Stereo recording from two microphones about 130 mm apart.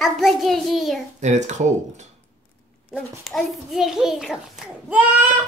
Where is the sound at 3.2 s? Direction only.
Centre (ahead or behind).